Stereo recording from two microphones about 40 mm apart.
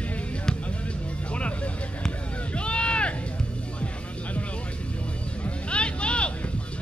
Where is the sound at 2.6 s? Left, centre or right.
Left.